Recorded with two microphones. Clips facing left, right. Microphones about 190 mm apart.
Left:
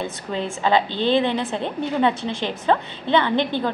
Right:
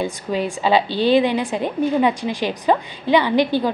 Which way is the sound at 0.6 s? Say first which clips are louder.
Right 1 dB; 10° right (ahead or behind).